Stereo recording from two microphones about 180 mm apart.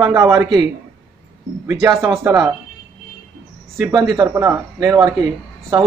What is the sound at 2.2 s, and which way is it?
Speech, 20° right (ahead or behind).